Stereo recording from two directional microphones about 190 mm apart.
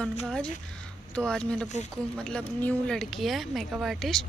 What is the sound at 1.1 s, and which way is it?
Speech, 5° left (ahead or behind).